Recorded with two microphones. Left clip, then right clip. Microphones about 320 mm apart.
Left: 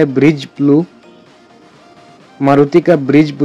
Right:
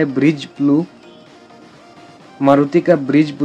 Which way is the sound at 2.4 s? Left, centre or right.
Centre.